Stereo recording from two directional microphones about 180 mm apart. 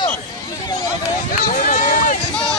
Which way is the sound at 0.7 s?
20° left (ahead or behind).